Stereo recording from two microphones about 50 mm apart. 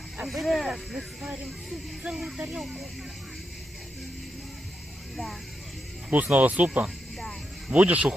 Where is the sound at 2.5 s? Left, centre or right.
Centre.